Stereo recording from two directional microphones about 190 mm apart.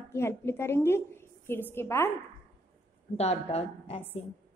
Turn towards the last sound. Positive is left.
turn(degrees=35)  # may be behind; listen again after turning